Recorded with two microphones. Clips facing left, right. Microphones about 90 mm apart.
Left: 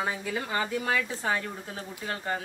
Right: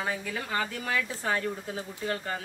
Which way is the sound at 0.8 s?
25° left (ahead or behind).